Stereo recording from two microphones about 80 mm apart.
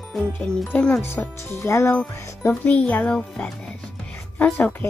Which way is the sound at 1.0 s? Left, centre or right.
Left.